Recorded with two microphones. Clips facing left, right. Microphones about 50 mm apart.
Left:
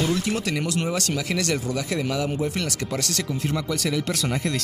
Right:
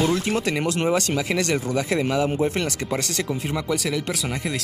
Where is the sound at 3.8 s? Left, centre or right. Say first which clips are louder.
Left 1 dB; centre.